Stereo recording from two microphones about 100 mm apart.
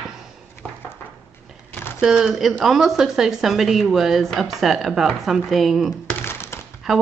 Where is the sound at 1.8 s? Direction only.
25° left (ahead or behind).